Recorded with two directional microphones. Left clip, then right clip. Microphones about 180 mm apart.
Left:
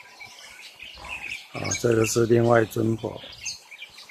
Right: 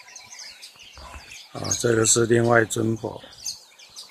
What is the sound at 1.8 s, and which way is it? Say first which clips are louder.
Speech: right 1 dB; 20° right (ahead or behind).